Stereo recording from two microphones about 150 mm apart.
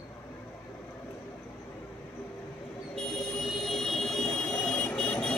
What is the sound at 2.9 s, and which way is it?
Vehicle, 5° left (ahead or behind).